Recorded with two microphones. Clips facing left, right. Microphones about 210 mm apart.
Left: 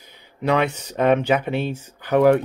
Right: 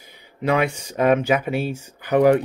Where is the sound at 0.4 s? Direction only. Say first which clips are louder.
Even; 10° right (ahead or behind).